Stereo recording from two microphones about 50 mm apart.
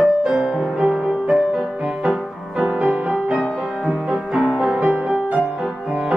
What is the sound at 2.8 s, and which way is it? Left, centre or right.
Music, right.